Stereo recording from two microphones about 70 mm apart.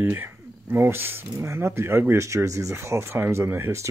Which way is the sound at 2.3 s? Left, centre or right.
Right.